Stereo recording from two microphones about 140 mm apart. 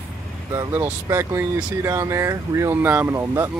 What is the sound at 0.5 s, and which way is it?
Speech, 25° right (ahead or behind).